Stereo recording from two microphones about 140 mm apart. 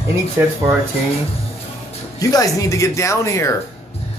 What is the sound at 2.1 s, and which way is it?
Speech, 25° left (ahead or behind).